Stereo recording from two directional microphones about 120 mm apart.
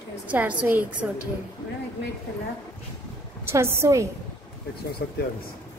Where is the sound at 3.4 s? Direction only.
20° right (ahead or behind).